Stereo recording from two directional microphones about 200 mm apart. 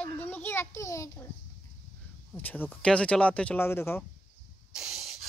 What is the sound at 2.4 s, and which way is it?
Speech, 10° left (ahead or behind).